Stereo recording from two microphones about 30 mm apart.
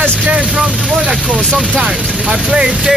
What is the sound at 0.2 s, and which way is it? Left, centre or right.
Speech, right.